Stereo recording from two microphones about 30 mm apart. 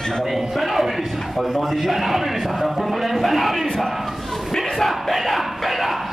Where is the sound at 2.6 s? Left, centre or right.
Centre.